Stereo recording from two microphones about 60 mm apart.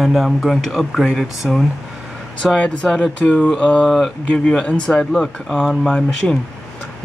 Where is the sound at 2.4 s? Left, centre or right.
Centre.